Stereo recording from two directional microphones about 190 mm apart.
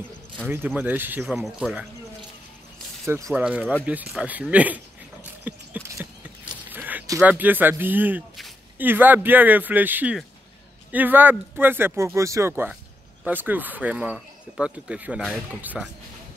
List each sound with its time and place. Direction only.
0.5 s speech: 10° right (ahead or behind)
3.3 s speech: 5° right (ahead or behind)
5.4 s a sound: 10° right (ahead or behind)
6.7 s speech: 10° right (ahead or behind)